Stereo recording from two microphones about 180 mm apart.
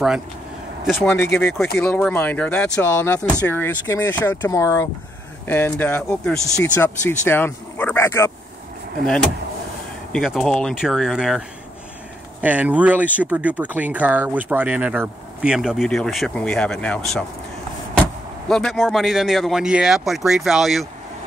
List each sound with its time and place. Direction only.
1.0 s speech: 15° left (ahead or behind)
10.1 s speech: centre (ahead or behind)
18.5 s speech: centre (ahead or behind)